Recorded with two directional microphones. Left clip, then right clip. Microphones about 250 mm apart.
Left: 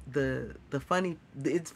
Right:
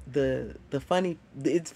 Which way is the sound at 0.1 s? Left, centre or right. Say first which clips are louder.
Right 4 dB; centre.